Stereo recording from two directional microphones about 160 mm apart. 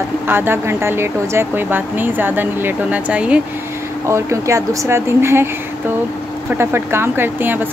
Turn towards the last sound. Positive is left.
turn(degrees=-15)  # may be behind; listen again after turning